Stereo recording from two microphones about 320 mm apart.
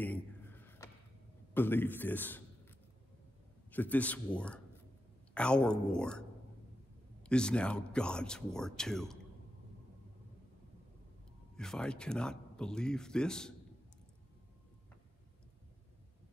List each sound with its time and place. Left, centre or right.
0.0 s a sound: centre
1.5 s speech: centre
3.7 s speech: centre
7.2 s speech: centre
11.5 s speech: centre